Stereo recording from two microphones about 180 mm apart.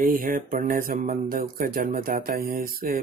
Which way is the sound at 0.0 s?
50° right (ahead or behind).